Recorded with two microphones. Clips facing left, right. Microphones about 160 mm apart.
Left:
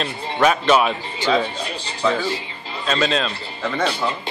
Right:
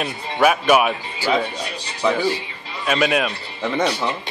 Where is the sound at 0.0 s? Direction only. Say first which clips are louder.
Even; 10° right (ahead or behind).